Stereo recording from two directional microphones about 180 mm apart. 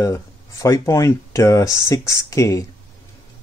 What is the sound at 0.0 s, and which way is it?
Speech, 15° left (ahead or behind).